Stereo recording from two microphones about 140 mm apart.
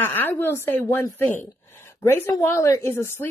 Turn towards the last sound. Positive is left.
turn(degrees=20)  # may be behind; listen again after turning